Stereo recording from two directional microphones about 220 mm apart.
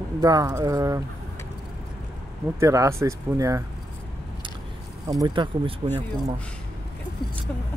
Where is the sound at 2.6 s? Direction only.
15° right (ahead or behind).